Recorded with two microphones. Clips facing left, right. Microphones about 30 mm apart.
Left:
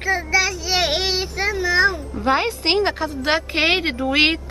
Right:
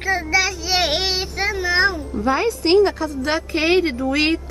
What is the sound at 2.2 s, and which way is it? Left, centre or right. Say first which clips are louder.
A woman's voice: even; left.